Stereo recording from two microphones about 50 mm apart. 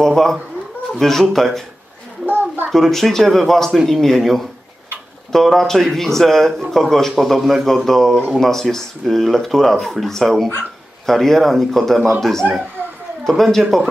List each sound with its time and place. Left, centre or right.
0.0 s speech: centre
2.2 s a sound: right
2.7 s a man's voice: centre